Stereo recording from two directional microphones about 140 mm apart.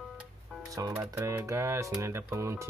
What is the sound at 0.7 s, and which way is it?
Speech, 25° right (ahead or behind).